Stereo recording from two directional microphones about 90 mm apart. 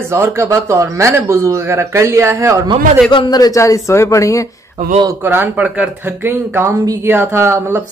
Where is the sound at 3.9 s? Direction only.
35° left (ahead or behind).